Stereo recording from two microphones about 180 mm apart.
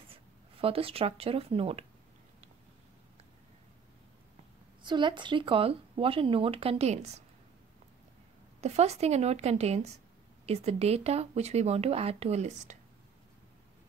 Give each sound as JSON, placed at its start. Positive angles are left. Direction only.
{"t": 0.1, "sound": "speech", "side_deg": -30}
{"t": 4.8, "sound": "speech", "side_deg": -25}
{"t": 8.5, "sound": "speech", "side_deg": -35}